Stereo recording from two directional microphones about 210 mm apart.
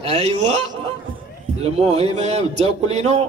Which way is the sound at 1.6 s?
30° right (ahead or behind).